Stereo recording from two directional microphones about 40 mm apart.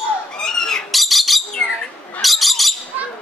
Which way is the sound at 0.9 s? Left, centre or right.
Centre.